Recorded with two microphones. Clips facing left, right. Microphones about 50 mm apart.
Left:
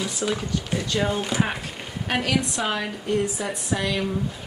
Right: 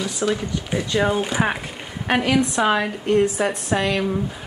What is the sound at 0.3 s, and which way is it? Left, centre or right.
A woman's voice, centre.